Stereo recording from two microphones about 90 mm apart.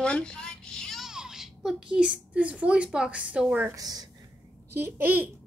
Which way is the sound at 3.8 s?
45° right (ahead or behind).